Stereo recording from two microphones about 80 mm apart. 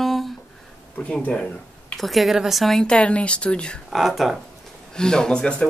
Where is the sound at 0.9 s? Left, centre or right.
Centre.